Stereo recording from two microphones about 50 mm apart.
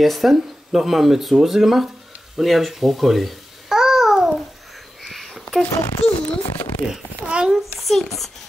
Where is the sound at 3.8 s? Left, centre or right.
Centre.